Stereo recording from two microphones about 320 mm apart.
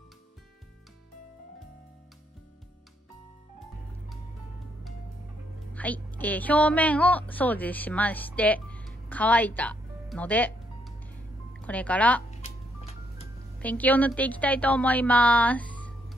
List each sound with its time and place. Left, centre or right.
5.7 s a woman's voice: centre
12.3 s music: centre
13.6 s a woman's voice: centre